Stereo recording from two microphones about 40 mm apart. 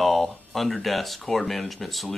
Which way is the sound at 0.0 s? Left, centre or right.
Centre.